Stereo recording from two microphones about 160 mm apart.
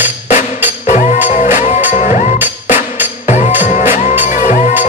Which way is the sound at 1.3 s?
50° left (ahead or behind).